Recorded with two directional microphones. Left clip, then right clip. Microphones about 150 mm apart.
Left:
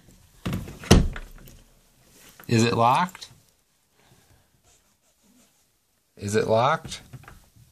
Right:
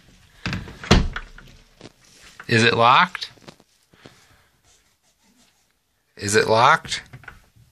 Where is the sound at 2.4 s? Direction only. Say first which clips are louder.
Right 5 dB; 15° left (ahead or behind).